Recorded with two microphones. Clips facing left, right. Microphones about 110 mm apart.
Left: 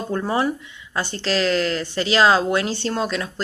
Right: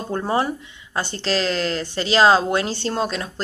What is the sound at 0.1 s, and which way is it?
Speech, 35° right (ahead or behind).